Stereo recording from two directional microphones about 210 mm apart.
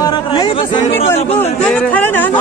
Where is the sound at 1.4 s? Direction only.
5° left (ahead or behind).